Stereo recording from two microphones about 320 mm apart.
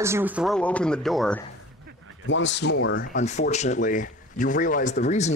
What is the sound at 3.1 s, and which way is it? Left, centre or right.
Speech, left.